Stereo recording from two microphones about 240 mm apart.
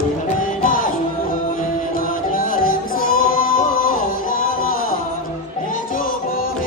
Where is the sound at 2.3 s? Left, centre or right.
Left.